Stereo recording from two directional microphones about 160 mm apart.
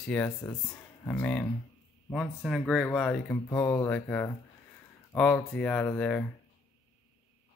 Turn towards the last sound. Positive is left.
turn(degrees=10)  # may be behind; listen again after turning